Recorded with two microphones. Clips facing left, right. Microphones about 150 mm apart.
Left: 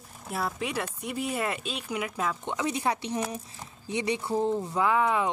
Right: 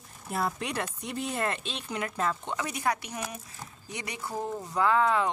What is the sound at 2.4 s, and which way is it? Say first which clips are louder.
Speech: left 2 dB; 20° left (ahead or behind).